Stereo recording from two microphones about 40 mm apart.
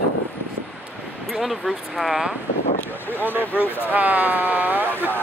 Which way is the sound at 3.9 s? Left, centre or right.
Right.